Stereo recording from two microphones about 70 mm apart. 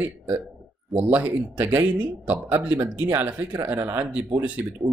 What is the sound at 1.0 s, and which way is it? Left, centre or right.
Speech, right.